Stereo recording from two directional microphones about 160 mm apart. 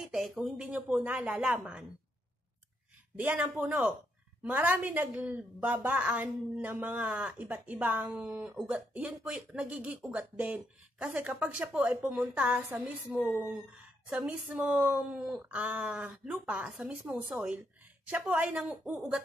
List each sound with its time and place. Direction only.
0.0 s a woman's voice: centre (ahead or behind)
3.2 s a woman's voice: 10° right (ahead or behind)